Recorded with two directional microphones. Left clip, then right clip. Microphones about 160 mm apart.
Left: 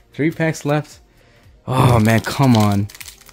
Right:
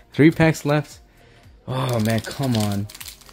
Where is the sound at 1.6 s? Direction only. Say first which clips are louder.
Left 8 dB; 40° left (ahead or behind).